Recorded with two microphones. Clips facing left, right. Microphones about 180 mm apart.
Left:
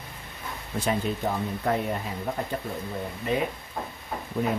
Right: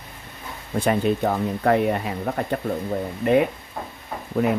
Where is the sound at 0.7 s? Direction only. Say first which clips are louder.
Right 7 dB; 60° right (ahead or behind).